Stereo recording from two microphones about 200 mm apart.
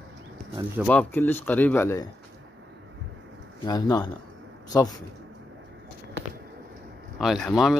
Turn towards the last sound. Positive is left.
turn(degrees=0)  # may be behind; listen again after turning